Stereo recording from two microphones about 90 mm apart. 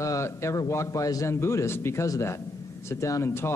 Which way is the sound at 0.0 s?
35° left (ahead or behind).